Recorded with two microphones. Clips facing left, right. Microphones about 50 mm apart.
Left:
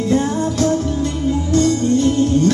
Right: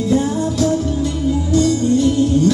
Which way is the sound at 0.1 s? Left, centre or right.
Left.